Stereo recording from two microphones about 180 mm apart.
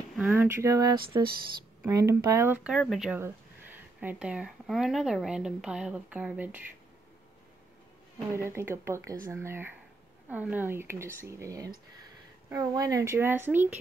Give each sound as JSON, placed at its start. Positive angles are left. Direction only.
{"t": 0.1, "sound": "speech", "side_deg": -5}
{"t": 3.2, "sound": "speech", "side_deg": -10}
{"t": 8.4, "sound": "speech", "side_deg": -15}